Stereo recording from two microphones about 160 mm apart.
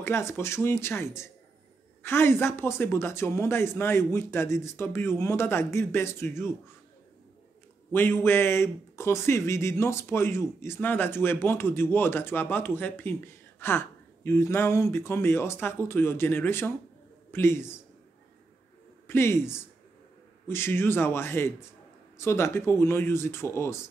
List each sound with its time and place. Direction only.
0.0 s speech: 15° left (ahead or behind)
7.9 s speech: 15° left (ahead or behind)
19.0 s speech: 15° left (ahead or behind)